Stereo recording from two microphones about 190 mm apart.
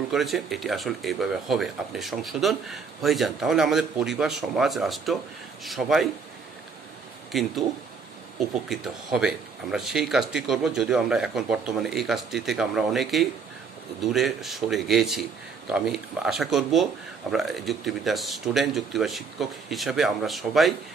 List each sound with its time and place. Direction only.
0.1 s speech: centre (ahead or behind)
7.3 s speech: centre (ahead or behind)
8.6 s speech: centre (ahead or behind)